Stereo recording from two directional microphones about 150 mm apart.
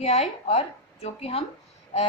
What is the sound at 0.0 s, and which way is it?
A woman's voice, 45° left (ahead or behind).